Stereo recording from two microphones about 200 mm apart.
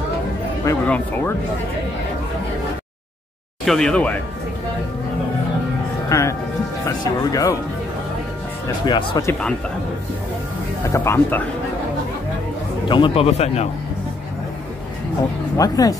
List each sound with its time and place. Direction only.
0.7 s speech: 10° left (ahead or behind)
3.6 s speech: 5° left (ahead or behind)
6.0 s speech: 15° left (ahead or behind)
8.6 s speech: 20° left (ahead or behind)
10.9 s speech: 10° left (ahead or behind)
12.8 s speech: 25° left (ahead or behind)
15.5 s speech: 20° left (ahead or behind)